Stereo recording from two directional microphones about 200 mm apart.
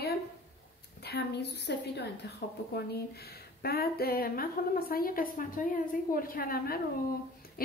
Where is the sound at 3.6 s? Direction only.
50° left (ahead or behind).